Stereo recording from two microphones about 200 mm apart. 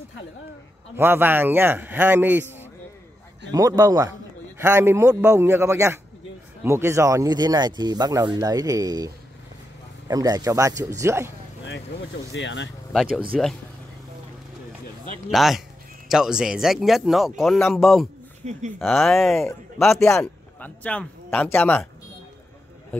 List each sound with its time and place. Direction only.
0.9 s a man's voice: 10° right (ahead or behind)
3.5 s a man's voice: 15° right (ahead or behind)
12.3 s speech: 65° left (ahead or behind)
12.9 s speech: centre (ahead or behind)
15.3 s speech: centre (ahead or behind)
18.4 s speech: 35° right (ahead or behind)
18.8 s a man's voice: centre (ahead or behind)